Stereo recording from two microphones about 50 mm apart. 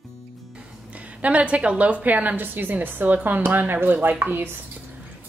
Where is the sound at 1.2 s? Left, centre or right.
Right.